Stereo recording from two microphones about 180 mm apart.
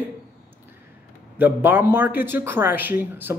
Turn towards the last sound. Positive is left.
turn(degrees=-10)  # may be behind; listen again after turning